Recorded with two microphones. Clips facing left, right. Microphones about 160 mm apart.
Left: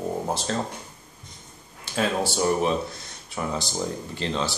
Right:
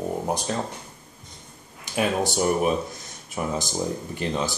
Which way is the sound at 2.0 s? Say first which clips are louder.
Right 1 dB; 15° right (ahead or behind).